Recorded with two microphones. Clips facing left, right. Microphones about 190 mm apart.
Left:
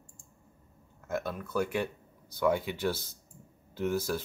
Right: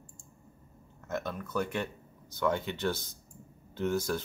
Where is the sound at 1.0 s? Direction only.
10° left (ahead or behind).